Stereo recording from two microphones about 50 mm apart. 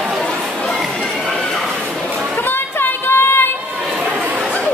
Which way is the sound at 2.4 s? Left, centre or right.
Left.